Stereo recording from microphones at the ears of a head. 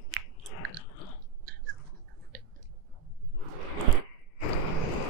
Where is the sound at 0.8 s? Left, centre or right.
Left.